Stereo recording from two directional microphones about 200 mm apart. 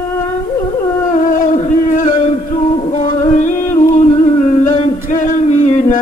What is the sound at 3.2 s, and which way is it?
Music, 40° left (ahead or behind).